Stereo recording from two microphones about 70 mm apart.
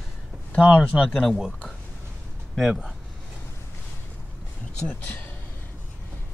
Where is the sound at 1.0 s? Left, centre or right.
Centre.